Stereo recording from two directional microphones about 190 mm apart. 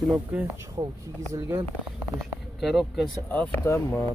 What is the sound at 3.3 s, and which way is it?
Speech, 10° left (ahead or behind).